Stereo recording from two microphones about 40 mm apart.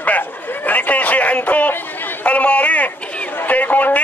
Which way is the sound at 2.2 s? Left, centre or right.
Left.